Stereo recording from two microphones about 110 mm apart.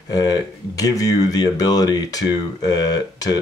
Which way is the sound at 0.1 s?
35° left (ahead or behind).